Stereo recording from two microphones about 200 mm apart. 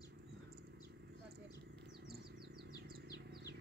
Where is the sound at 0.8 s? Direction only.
55° right (ahead or behind).